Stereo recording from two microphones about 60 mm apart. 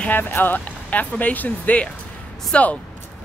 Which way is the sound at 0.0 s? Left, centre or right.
Left.